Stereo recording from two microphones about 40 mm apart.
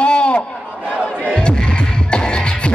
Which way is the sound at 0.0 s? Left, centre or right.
Left.